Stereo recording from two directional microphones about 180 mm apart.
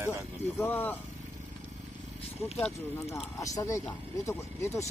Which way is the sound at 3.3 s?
20° left (ahead or behind).